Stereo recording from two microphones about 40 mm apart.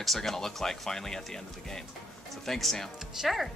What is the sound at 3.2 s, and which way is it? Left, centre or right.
Speech, centre.